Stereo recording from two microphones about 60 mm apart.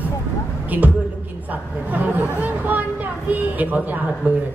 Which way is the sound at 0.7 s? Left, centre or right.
Right.